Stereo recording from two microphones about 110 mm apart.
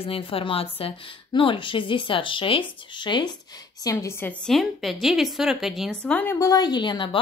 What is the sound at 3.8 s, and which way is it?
Speech, 30° left (ahead or behind).